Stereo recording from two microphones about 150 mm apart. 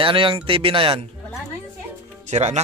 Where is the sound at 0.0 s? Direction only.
35° right (ahead or behind).